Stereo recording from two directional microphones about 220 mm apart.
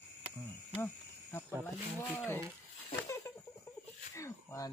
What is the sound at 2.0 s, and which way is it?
Speech, centre (ahead or behind).